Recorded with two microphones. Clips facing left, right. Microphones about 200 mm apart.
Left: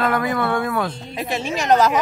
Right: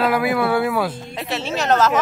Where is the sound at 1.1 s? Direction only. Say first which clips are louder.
Left 1 dB; 10° left (ahead or behind).